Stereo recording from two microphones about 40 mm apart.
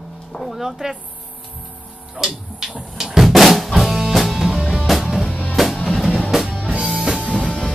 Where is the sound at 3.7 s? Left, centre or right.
Centre.